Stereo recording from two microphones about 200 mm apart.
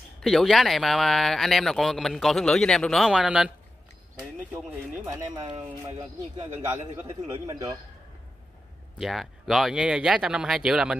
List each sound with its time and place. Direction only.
0.2 s speech: centre (ahead or behind)
5.3 s speech: 30° right (ahead or behind)
7.0 s a man's voice: 15° right (ahead or behind)
9.0 s speech: centre (ahead or behind)